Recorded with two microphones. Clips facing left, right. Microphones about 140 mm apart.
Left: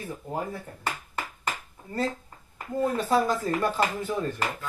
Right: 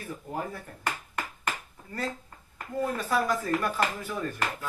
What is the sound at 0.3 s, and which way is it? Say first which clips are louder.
Speech: left 2 dB; 20° left (ahead or behind).